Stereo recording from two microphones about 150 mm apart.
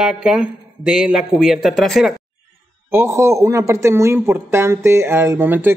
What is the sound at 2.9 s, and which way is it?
Speech, 15° right (ahead or behind).